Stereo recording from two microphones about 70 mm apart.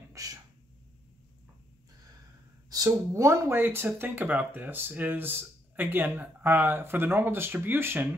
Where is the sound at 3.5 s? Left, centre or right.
Right.